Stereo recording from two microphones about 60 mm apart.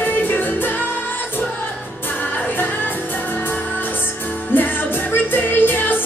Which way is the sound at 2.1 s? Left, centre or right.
Left.